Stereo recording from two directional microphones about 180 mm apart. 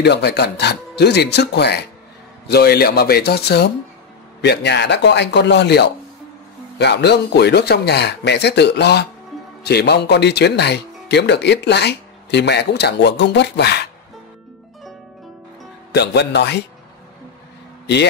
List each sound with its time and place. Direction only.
0.0 s speech: 65° left (ahead or behind)
15.9 s speech: 65° left (ahead or behind)